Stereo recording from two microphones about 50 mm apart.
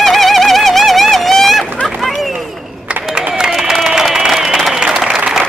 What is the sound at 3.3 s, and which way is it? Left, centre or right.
Crowd, centre.